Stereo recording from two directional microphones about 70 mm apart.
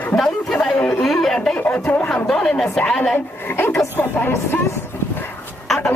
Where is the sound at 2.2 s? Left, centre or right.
Centre.